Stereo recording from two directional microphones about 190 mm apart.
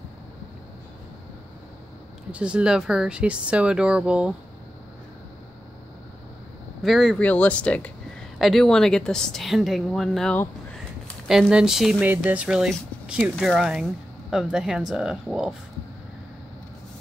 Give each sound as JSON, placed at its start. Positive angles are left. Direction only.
{"t": 2.3, "sound": "speech", "side_deg": -5}
{"t": 6.8, "sound": "speech", "side_deg": 0}